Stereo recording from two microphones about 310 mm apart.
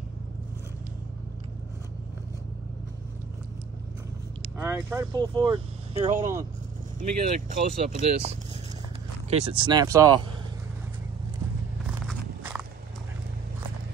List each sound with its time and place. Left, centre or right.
4.6 s speech: centre
7.0 s speech: right
12.1 s walk: centre